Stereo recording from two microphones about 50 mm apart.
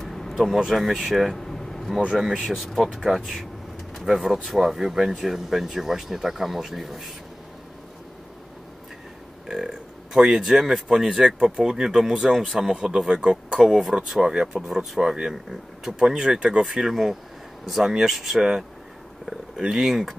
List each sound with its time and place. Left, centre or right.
0.0 s vehicle: centre
0.4 s speech: centre
2.1 s speech: centre
9.5 s burping: right
10.1 s speech: centre
12.7 s speech: centre